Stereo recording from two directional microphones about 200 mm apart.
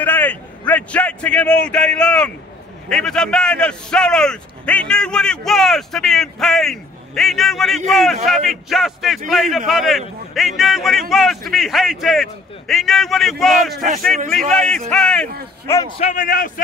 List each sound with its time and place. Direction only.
0.0 s a man's voice: 10° left (ahead or behind)
13.8 s a man's voice: 40° right (ahead or behind)
14.3 s a man's voice: centre (ahead or behind)
16.0 s speech: 40° left (ahead or behind)